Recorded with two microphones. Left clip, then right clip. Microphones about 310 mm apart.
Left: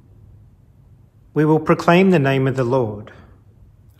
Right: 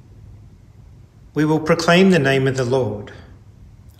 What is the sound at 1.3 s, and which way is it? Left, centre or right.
A man's voice, centre.